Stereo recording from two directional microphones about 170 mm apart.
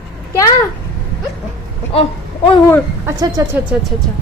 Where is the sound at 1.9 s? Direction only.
30° left (ahead or behind).